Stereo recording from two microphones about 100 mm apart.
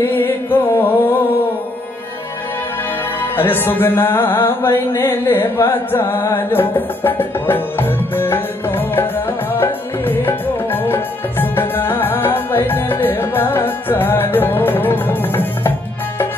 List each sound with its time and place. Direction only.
0.0 s music: 25° left (ahead or behind)
3.2 s music: 20° left (ahead or behind)